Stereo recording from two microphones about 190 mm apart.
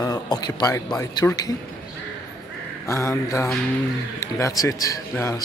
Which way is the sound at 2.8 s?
15° left (ahead or behind).